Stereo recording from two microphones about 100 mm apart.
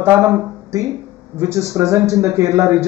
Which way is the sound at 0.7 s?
30° right (ahead or behind).